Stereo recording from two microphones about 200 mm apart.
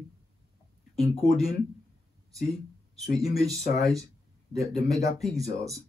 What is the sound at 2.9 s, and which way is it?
Speech, centre (ahead or behind).